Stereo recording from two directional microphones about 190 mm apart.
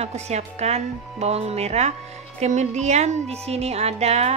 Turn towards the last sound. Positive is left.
turn(degrees=-35)  # may be behind; listen again after turning